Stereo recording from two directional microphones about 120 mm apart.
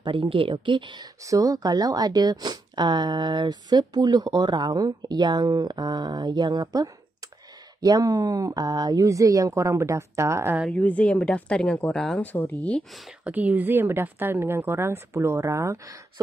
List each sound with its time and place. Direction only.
0.0 s speech: 45° right (ahead or behind)
1.2 s a woman's voice: 30° right (ahead or behind)
10.7 s speech: 10° left (ahead or behind)
13.2 s a woman's voice: 15° right (ahead or behind)